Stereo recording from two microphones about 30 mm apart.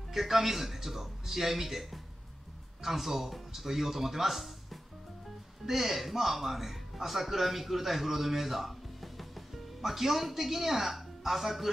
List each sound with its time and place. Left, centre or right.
0.1 s speech: centre
5.7 s speech: centre